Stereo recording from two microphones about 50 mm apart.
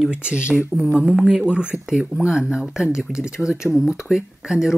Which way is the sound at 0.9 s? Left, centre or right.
Centre.